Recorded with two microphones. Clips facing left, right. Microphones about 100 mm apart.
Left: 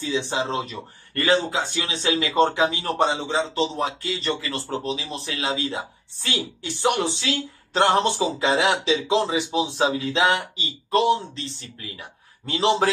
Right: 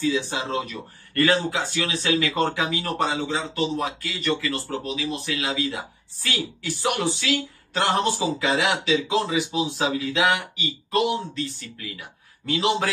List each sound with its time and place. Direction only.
0.0 s speech: 25° left (ahead or behind)